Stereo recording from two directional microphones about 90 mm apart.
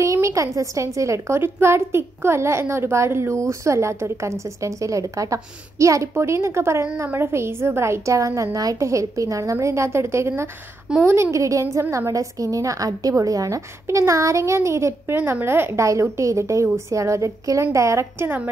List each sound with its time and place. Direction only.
0.0 s a woman's voice: 35° right (ahead or behind)